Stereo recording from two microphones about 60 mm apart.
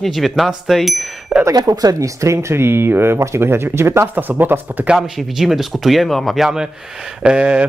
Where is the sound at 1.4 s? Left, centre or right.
Right.